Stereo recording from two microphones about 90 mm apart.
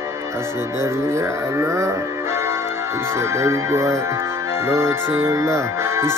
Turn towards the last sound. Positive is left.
turn(degrees=-30)  # may be behind; listen again after turning